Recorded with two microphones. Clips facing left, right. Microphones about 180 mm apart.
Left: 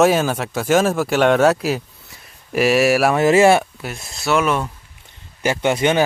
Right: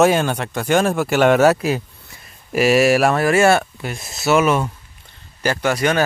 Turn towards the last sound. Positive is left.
turn(degrees=20)  # may be behind; listen again after turning